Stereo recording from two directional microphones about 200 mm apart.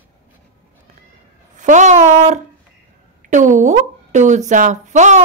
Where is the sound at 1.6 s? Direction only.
35° right (ahead or behind).